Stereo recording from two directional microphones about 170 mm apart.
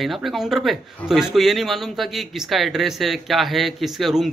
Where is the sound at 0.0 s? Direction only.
Centre (ahead or behind).